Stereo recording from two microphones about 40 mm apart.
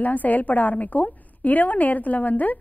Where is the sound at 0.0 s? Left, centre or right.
Left.